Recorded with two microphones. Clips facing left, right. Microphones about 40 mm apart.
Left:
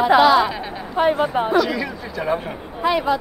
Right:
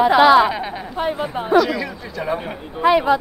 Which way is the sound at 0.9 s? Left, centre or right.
Centre.